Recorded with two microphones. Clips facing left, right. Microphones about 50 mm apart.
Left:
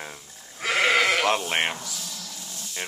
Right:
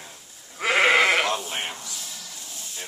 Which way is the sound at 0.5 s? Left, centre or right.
Centre.